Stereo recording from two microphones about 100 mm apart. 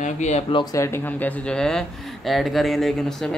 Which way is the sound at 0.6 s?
30° left (ahead or behind).